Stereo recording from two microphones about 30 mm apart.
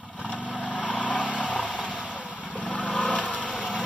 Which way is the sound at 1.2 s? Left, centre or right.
Right.